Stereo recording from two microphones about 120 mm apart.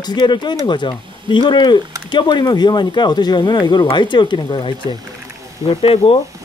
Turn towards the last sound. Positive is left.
turn(degrees=50)  # may be behind; listen again after turning